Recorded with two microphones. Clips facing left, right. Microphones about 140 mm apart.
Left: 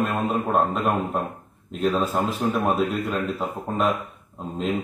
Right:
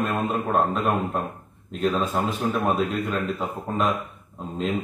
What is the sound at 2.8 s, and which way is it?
Speech, 45° left (ahead or behind).